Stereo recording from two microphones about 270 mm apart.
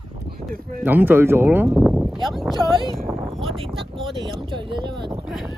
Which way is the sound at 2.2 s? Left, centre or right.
Centre.